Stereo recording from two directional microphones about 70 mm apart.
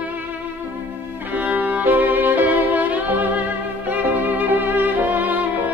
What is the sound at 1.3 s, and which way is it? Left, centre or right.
Violin, right.